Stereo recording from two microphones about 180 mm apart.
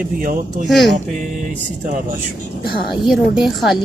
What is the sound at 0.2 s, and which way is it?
Speech, 50° right (ahead or behind).